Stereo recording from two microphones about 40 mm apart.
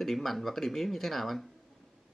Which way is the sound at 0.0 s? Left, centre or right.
Centre.